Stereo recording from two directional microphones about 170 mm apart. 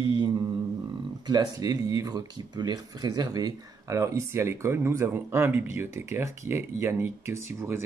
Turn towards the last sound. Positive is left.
turn(degrees=-15)  # may be behind; listen again after turning